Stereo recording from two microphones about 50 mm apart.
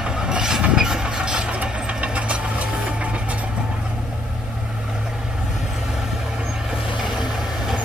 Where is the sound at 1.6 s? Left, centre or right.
Right.